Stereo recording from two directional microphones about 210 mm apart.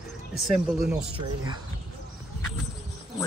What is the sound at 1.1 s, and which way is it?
Speech, 20° right (ahead or behind).